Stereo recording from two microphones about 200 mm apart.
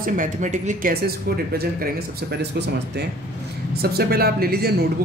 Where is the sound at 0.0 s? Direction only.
40° right (ahead or behind).